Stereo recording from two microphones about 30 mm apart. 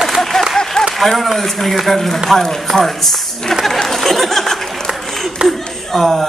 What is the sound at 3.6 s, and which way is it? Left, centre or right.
Chatter, centre.